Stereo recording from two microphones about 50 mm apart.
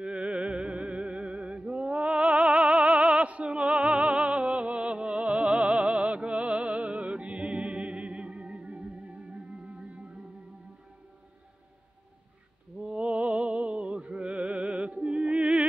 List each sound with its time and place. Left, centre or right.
0.0 s music: right
12.8 s music: right